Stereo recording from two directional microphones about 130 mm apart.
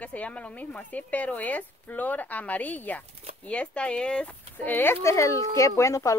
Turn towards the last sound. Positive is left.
turn(degrees=25)  # may be behind; listen again after turning